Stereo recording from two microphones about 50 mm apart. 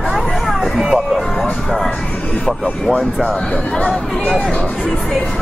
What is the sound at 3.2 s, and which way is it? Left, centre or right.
Speech, left.